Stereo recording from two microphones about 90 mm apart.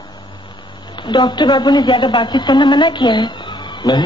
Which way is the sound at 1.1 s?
60° left (ahead or behind).